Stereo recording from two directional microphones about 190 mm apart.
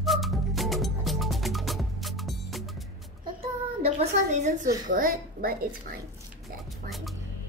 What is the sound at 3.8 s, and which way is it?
Speech, 35° right (ahead or behind).